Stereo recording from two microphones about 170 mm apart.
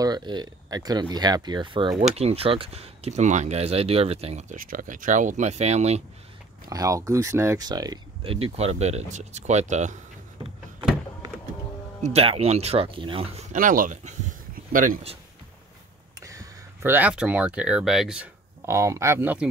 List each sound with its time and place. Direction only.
0.0 s speech: 25° right (ahead or behind)
6.7 s speech: 20° right (ahead or behind); by 9.9 s 45° right (ahead or behind)
12.0 s speech: 35° right (ahead or behind)
13.5 s speech: 50° right (ahead or behind)
16.2 s speech: 20° right (ahead or behind)
18.7 s speech: 15° right (ahead or behind)